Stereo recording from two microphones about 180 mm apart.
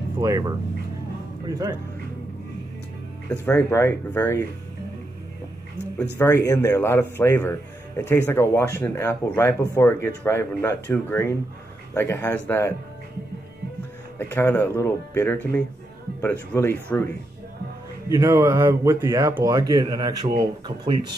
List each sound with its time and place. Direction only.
0.2 s speech: 20° right (ahead or behind)
3.3 s speech: 10° left (ahead or behind)
6.1 s speech: 10° left (ahead or behind)
14.1 s speech: 10° left (ahead or behind)
18.1 s speech: 15° right (ahead or behind)